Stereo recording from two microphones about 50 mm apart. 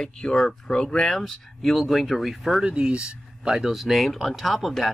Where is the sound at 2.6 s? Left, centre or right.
Centre.